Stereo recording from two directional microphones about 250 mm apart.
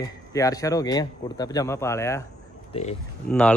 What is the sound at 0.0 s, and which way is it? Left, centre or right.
Speech, centre.